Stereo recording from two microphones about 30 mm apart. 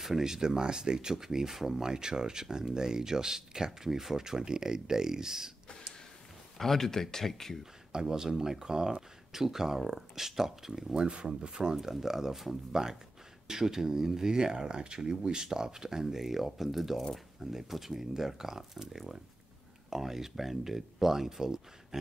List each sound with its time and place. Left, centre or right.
0.0 s speech: centre
6.6 s speech: centre
7.9 s speech: right
10.9 s speech: right
11.7 s speech: centre